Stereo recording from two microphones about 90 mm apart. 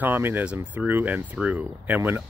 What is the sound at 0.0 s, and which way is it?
Speech, 20° right (ahead or behind).